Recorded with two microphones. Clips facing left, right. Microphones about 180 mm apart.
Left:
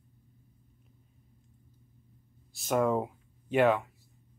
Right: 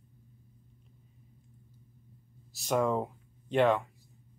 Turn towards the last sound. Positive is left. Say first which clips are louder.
# left 1 dB
turn(degrees=5)  # may be behind; listen again after turning